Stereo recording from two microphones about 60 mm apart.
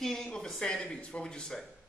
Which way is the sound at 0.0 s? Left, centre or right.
Centre.